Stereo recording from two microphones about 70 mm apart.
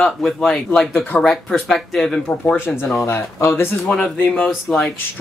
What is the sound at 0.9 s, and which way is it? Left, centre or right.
Speech, left.